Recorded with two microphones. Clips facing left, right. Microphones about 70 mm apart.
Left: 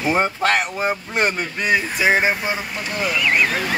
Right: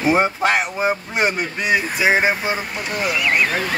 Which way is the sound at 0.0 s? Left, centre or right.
Centre.